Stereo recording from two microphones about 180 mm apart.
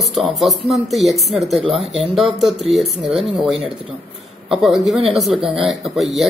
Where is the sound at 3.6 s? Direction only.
30° right (ahead or behind).